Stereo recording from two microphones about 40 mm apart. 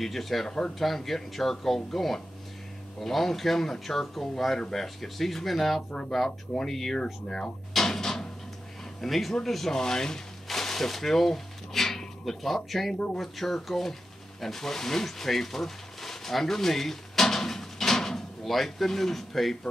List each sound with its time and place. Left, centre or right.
0.0 s speech: centre
0.5 s speech: centre
0.7 s speech: centre
5.9 s speech: left
6.5 s speech: centre
7.7 s a sound: centre
9.0 s speech: centre